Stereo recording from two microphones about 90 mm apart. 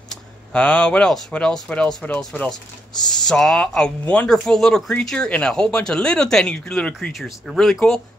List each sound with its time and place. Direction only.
0.1 s speech: 10° left (ahead or behind)
3.3 s speech: 5° left (ahead or behind)
4.3 s speech: 5° left (ahead or behind)
7.2 s speech: centre (ahead or behind)